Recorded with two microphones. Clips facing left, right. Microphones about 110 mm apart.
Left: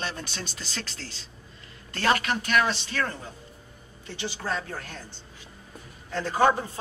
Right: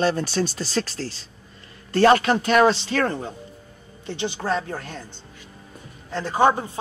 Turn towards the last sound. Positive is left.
turn(degrees=-20)  # may be behind; listen again after turning